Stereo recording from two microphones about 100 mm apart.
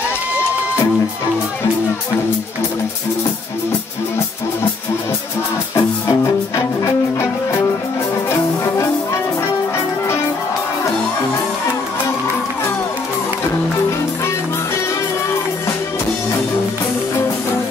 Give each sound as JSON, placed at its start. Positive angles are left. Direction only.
{"t": 5.8, "sound": "music", "side_deg": 35}